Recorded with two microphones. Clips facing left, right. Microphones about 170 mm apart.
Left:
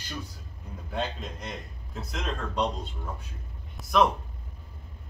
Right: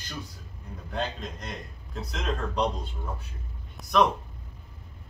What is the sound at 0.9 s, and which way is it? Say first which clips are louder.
Speech: even; 5° left (ahead or behind).